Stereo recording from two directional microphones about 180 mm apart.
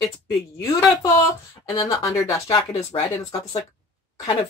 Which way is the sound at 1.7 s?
20° left (ahead or behind).